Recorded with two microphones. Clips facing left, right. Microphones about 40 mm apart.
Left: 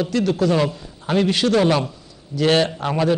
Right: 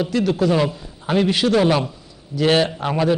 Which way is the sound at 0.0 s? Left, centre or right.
Centre.